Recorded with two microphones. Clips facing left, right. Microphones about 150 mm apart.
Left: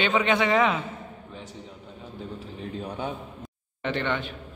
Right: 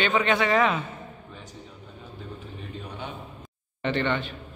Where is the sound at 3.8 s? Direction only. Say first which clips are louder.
Right 2 dB; 10° left (ahead or behind).